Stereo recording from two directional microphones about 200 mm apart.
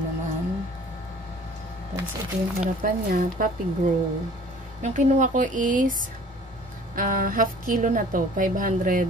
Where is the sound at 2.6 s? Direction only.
45° right (ahead or behind).